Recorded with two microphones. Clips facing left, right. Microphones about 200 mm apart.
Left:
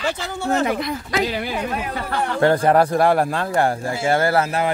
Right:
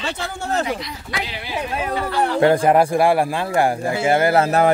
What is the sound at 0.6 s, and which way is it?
Speech, 55° left (ahead or behind).